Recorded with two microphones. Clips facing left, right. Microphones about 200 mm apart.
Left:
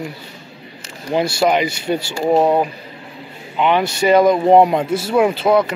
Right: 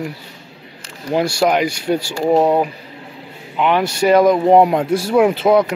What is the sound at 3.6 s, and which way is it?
Speech, 5° right (ahead or behind).